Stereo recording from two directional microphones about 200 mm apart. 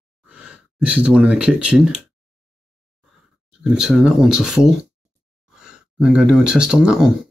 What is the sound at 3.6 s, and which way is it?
Speech, centre (ahead or behind).